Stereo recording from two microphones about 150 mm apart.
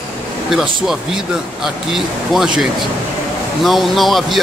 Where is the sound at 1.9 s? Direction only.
Centre (ahead or behind).